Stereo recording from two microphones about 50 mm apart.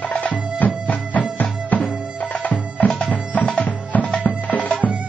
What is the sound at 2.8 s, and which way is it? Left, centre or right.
Music, centre.